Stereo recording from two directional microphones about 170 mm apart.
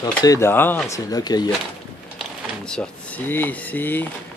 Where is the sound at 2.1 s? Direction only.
5° left (ahead or behind).